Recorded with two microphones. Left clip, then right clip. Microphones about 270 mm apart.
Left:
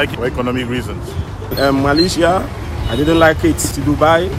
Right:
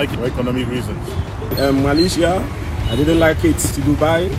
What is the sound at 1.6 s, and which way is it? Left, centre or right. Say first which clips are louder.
Speech: left 3 dB; centre.